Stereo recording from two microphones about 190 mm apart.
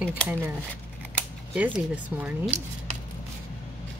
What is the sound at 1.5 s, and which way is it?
A woman's voice, 10° right (ahead or behind).